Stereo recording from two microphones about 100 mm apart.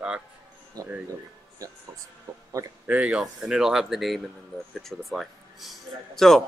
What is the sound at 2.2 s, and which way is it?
Speech, 35° right (ahead or behind).